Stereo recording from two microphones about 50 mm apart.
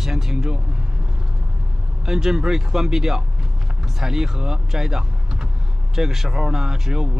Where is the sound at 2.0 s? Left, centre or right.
Centre.